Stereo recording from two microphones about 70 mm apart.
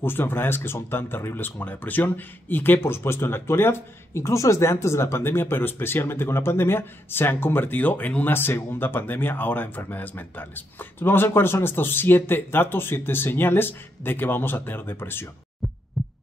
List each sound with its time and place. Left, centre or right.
0.0 s speech: left
16.0 s heart sounds: centre